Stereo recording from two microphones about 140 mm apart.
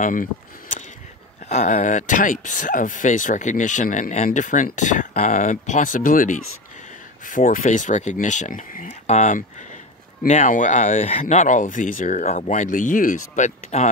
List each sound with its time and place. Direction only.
0.0 s speech: 70° left (ahead or behind)
13.7 s speech: 50° left (ahead or behind)